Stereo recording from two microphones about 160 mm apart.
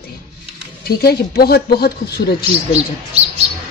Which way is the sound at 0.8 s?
75° left (ahead or behind).